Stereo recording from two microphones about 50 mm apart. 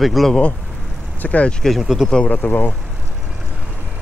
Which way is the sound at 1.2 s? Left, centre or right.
Left.